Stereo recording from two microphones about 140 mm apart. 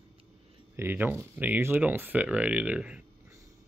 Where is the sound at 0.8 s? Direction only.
15° right (ahead or behind).